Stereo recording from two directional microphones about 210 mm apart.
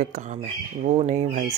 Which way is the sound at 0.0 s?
35° right (ahead or behind).